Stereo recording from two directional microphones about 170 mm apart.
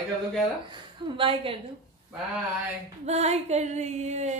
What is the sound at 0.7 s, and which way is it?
Speech, 30° right (ahead or behind).